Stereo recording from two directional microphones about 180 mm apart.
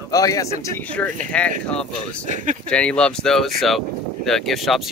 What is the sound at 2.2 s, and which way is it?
Speech, 45° right (ahead or behind).